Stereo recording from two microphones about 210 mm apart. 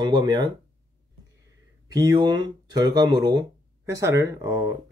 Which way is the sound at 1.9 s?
20° right (ahead or behind).